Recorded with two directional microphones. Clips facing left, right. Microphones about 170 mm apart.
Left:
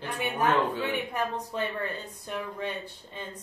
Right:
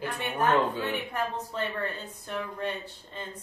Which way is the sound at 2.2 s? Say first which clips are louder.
Right 1 dB; 10° left (ahead or behind).